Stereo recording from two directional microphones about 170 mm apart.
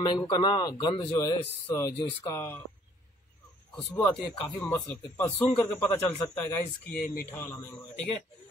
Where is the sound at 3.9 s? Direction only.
10° left (ahead or behind).